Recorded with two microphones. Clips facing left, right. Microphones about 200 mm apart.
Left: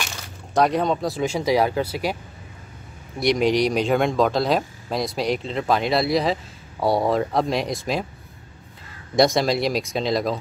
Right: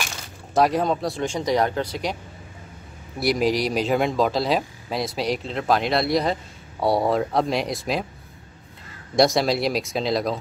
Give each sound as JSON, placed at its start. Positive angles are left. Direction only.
{"t": 0.6, "sound": "speech", "side_deg": 0}
{"t": 3.2, "sound": "speech", "side_deg": -5}
{"t": 9.1, "sound": "speech", "side_deg": 0}